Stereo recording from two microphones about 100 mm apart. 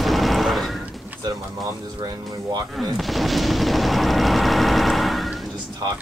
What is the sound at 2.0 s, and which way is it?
Speech, 35° right (ahead or behind).